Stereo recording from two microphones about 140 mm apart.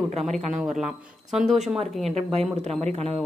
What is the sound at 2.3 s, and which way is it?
Speech, 50° right (ahead or behind).